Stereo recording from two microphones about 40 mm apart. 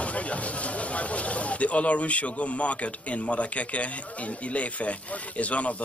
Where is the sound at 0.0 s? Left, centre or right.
Left.